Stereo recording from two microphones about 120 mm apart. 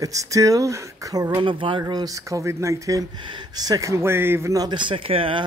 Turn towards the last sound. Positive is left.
turn(degrees=-50)  # may be behind; listen again after turning